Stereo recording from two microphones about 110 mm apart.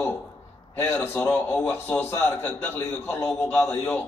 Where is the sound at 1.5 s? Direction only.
15° left (ahead or behind).